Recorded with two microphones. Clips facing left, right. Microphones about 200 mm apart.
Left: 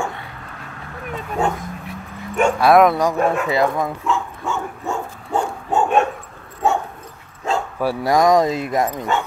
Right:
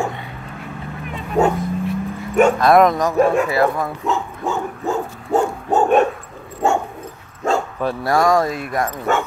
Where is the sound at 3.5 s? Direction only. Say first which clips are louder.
Right 1 dB; 20° left (ahead or behind).